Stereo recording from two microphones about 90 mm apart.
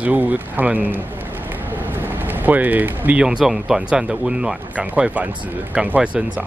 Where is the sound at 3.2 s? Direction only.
10° right (ahead or behind).